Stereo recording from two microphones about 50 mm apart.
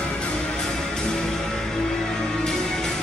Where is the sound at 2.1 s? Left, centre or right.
Centre.